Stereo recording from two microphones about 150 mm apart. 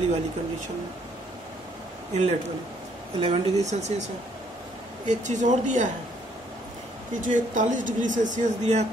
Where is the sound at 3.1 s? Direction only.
40° right (ahead or behind).